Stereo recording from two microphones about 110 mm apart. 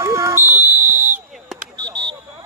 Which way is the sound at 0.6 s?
20° right (ahead or behind).